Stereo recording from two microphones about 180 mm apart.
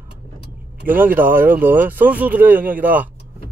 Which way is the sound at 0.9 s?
10° right (ahead or behind).